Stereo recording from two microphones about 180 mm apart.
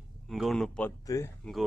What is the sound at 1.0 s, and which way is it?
Speech, 15° left (ahead or behind).